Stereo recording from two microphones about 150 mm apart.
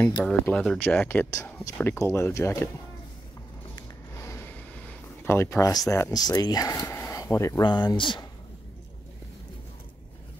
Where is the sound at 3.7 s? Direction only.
20° left (ahead or behind).